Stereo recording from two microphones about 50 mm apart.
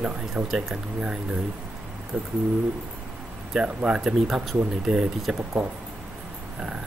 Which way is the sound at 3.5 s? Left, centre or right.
Centre.